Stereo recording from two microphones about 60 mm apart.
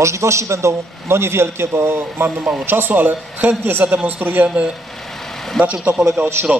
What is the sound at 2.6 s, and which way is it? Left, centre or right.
A man's voice, right.